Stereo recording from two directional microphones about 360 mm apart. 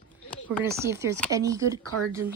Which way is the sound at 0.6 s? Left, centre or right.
Centre.